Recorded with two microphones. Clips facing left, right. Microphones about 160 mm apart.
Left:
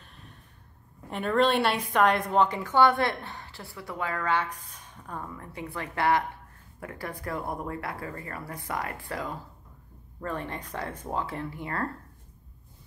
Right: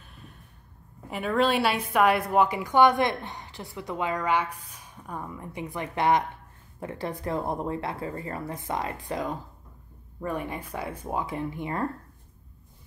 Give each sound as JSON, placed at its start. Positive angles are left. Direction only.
{"t": 1.1, "sound": "a woman's voice", "side_deg": -5}